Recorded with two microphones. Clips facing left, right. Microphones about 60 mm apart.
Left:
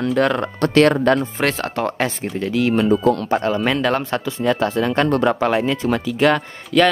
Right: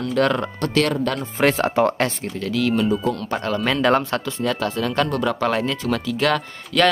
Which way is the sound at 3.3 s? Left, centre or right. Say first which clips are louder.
Left 4 dB; centre.